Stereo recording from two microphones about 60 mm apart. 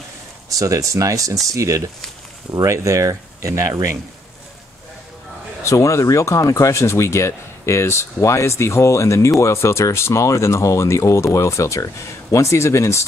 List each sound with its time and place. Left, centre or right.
0.5 s speech: right
5.6 s speech: left